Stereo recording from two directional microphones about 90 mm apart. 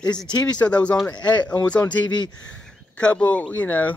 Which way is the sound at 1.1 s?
50° left (ahead or behind).